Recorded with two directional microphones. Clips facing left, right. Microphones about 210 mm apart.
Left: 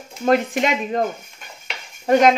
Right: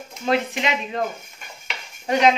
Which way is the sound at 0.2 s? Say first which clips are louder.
Left 5 dB; 45° left (ahead or behind).